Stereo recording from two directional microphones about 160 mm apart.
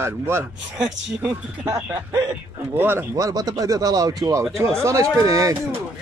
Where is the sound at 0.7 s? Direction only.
5° right (ahead or behind).